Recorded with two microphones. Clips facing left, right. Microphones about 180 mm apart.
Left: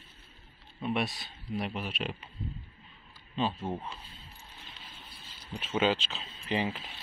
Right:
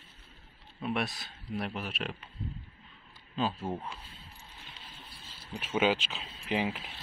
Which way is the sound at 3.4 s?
5° right (ahead or behind).